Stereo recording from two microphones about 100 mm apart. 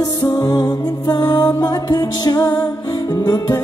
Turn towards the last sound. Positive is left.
turn(degrees=40)  # may be behind; listen again after turning